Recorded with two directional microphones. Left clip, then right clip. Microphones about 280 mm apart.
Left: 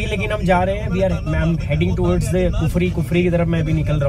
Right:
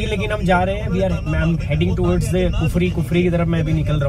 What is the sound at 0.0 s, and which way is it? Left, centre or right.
A man's voice, centre.